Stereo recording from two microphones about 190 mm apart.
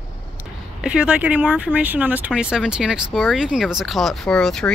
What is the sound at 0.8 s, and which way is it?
Speech, 5° right (ahead or behind).